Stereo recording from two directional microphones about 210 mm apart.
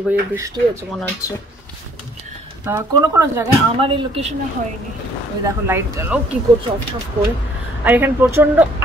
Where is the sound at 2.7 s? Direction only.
15° right (ahead or behind).